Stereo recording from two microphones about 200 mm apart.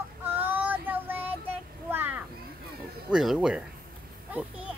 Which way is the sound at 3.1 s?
5° right (ahead or behind).